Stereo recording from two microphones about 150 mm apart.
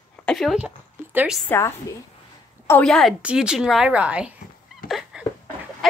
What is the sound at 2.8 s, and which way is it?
A woman's voice, 5° left (ahead or behind).